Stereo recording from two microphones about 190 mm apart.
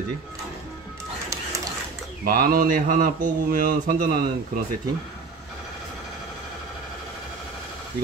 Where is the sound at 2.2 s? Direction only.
50° right (ahead or behind).